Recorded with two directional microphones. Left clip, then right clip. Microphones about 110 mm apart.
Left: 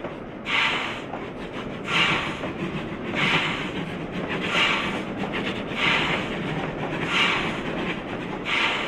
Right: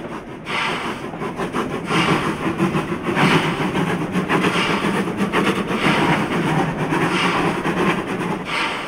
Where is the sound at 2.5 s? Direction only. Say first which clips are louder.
Right 10 dB; 50° right (ahead or behind).